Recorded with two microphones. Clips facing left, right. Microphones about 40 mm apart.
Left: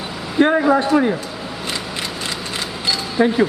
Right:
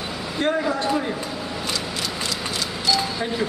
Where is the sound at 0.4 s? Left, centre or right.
Left.